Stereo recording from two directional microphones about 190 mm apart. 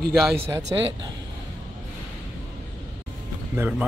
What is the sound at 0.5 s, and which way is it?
Speech, 20° right (ahead or behind).